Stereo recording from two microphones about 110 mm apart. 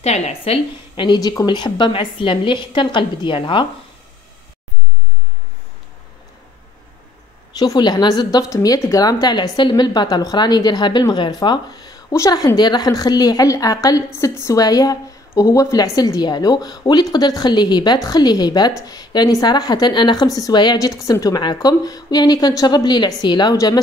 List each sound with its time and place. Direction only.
0.0 s a woman's voice: 80° left; by 1.0 s 65° left (ahead or behind)
1.0 s a woman's voice: 40° left (ahead or behind)
7.5 s a woman's voice: 35° left (ahead or behind)